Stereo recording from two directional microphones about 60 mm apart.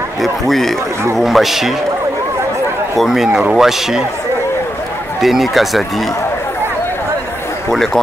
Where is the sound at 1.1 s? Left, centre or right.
Centre.